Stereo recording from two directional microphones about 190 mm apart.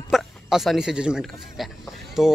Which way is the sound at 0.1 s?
Centre (ahead or behind).